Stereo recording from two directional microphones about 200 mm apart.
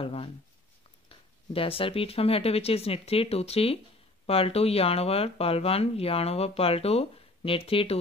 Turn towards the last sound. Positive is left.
turn(degrees=30)  # may be behind; listen again after turning